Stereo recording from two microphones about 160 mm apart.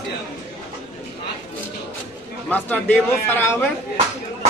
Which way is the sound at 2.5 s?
10° left (ahead or behind).